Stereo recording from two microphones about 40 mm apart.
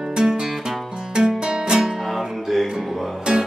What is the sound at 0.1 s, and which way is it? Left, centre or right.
Music, centre.